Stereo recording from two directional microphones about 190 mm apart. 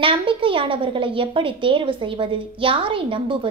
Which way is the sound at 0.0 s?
30° right (ahead or behind).